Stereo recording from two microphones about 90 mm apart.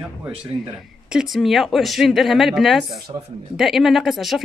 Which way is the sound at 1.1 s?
5° right (ahead or behind).